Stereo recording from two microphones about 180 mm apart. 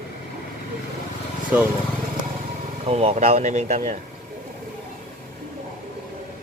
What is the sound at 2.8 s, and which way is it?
Speech, 35° right (ahead or behind).